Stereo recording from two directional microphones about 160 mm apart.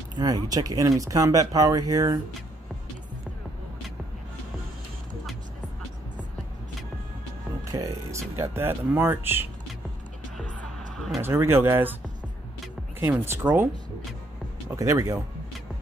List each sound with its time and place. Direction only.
0.2 s speech: 20° right (ahead or behind)
7.6 s speech: 20° right (ahead or behind)
11.1 s speech: 15° right (ahead or behind)
13.0 s speech: 15° right (ahead or behind)
14.8 s speech: 20° right (ahead or behind)